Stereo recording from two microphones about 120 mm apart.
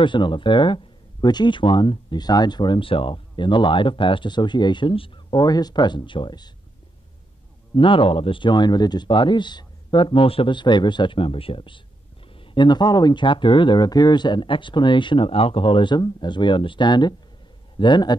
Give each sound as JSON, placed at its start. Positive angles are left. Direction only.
{"t": 0.0, "sound": "speech", "side_deg": 40}
{"t": 7.7, "sound": "speech", "side_deg": 45}